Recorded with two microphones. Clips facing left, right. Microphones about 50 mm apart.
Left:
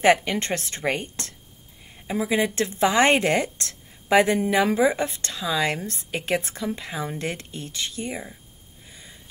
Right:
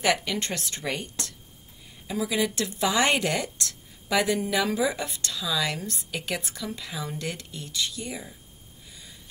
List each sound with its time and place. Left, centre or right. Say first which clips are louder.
0.0 s a woman's voice: left 6 dB; left